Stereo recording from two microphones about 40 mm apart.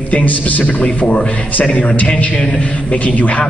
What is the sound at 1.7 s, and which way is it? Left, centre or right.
A man's voice, left.